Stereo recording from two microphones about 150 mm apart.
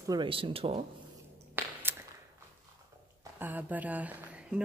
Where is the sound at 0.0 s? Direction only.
30° right (ahead or behind).